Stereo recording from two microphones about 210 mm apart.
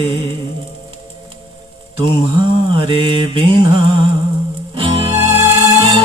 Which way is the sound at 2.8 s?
25° right (ahead or behind).